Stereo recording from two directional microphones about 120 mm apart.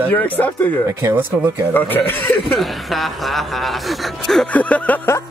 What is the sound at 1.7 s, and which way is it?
Speech, 15° left (ahead or behind).